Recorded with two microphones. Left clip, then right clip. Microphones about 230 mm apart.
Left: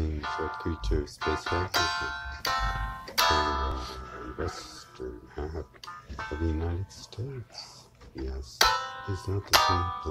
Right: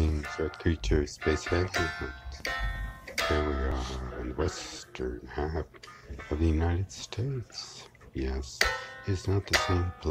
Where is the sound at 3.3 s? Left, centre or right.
Left.